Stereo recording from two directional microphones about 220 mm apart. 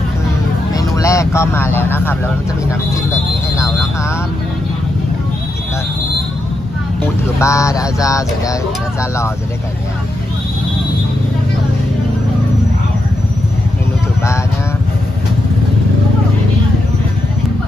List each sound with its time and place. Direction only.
0.7 s speech: 15° left (ahead or behind)
7.0 s speech: 15° left (ahead or behind)